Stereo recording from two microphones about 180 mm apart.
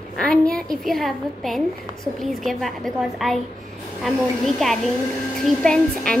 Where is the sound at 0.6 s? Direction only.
Centre (ahead or behind).